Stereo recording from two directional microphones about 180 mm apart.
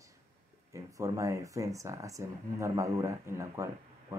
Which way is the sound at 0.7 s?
20° right (ahead or behind).